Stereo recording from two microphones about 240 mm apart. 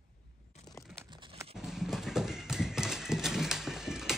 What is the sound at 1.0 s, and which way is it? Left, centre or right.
Tearing, centre.